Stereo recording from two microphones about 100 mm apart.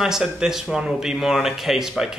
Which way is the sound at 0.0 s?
5° right (ahead or behind).